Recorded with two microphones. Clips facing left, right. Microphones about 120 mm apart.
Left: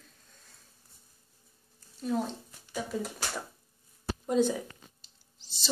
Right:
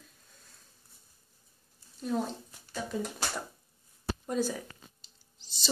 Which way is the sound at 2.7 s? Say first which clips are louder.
Left 1 dB; 5° left (ahead or behind).